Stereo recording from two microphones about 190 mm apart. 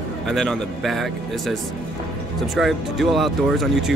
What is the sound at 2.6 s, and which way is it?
Speech, centre (ahead or behind).